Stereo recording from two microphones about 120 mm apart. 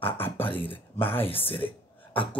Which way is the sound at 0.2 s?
15° left (ahead or behind).